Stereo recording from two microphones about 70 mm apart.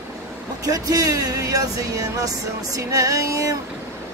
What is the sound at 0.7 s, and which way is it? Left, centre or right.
Speech, right.